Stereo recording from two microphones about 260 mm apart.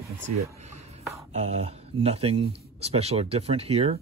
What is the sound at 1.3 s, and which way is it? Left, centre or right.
Speech, right.